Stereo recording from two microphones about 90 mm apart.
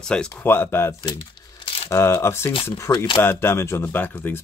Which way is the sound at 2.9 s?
60° left (ahead or behind).